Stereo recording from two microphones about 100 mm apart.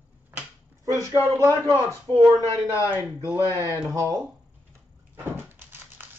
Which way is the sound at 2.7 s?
25° left (ahead or behind).